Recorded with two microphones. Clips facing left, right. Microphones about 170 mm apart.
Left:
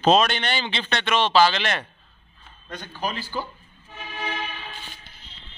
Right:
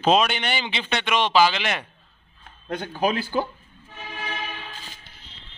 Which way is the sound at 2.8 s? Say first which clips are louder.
Right 6 dB; 55° right (ahead or behind).